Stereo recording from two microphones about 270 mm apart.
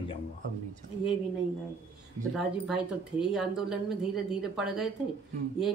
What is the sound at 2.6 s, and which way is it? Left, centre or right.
Speech, centre.